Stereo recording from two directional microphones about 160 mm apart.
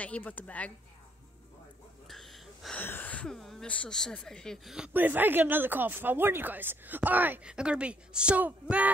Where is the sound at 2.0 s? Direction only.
Centre (ahead or behind).